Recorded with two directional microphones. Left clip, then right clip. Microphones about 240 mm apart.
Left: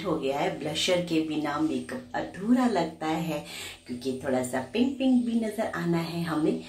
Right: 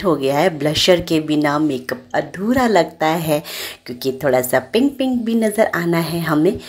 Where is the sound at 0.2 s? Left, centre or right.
Right.